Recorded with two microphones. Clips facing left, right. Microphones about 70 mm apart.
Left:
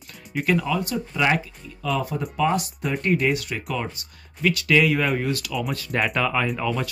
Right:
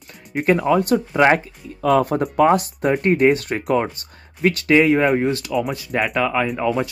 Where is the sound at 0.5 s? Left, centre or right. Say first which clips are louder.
Right 9 dB; right.